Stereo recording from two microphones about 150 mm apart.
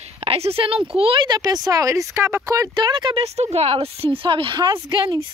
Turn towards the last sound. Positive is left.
turn(degrees=-30)  # may be behind; listen again after turning